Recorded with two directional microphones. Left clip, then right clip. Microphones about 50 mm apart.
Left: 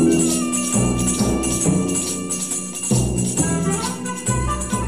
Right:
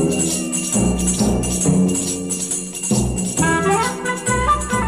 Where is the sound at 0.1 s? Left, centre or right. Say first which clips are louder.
Left 2 dB; left.